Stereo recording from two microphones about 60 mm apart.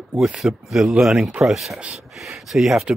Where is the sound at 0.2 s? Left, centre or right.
Centre.